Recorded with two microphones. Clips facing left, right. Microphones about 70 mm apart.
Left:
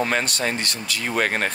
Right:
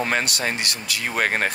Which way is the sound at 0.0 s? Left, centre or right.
Centre.